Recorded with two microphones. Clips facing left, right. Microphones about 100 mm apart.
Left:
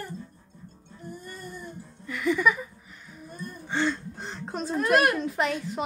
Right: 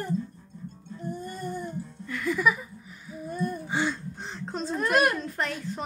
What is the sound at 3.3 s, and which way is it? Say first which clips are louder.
Gasp: right 10 dB; 55° right (ahead or behind).